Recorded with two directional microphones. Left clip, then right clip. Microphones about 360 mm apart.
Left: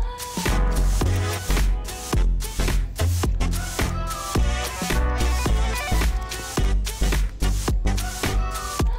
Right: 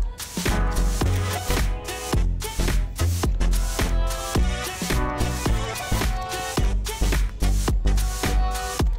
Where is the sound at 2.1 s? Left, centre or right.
Centre.